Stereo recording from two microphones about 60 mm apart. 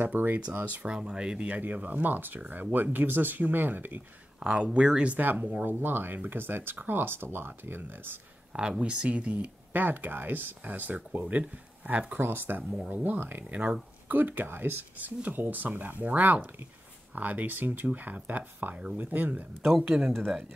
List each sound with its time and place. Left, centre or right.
0.0 s speech: right
0.8 s speech: centre; by 4.0 s right
4.4 s speech: centre
5.2 s speech: right
8.5 s speech: centre
12.2 s speech: right
19.8 s speech: centre
20.1 s speech: centre